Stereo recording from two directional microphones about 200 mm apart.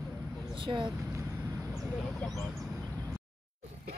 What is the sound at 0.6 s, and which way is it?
Speech, 25° right (ahead or behind).